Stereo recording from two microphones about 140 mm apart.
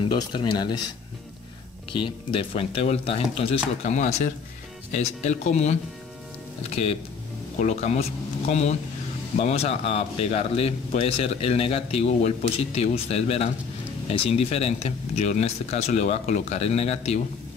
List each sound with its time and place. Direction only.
0.0 s speech: 35° left (ahead or behind)
2.0 s speech: 40° left (ahead or behind)